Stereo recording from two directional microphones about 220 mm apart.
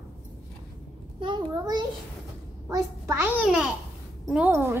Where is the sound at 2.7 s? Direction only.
10° right (ahead or behind).